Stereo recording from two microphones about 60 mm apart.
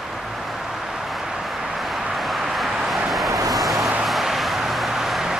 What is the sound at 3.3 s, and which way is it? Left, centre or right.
Vehicle, right.